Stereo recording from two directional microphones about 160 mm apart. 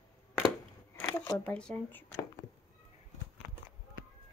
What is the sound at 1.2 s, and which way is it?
Speech, 15° left (ahead or behind).